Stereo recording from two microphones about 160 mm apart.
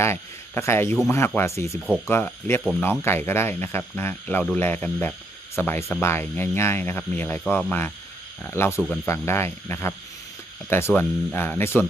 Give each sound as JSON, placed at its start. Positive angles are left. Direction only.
{"t": 0.0, "sound": "a man's voice", "side_deg": 15}